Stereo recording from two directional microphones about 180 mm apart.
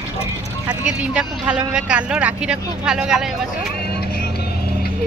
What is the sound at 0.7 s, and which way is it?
Speech, 5° right (ahead or behind).